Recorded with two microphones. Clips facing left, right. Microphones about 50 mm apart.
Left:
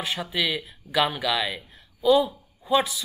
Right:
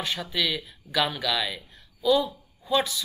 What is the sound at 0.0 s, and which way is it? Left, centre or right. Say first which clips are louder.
Speech: left 1 dB; centre.